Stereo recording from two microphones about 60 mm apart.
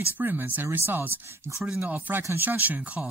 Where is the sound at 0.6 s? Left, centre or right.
Right.